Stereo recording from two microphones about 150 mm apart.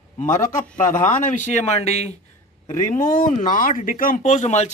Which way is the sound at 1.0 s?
55° left (ahead or behind).